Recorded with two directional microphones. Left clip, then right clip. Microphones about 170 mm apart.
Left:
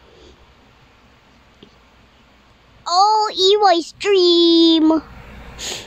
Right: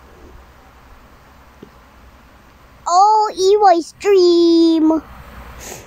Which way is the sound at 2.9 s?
5° right (ahead or behind).